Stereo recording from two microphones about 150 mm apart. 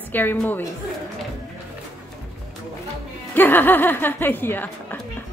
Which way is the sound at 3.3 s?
15° left (ahead or behind).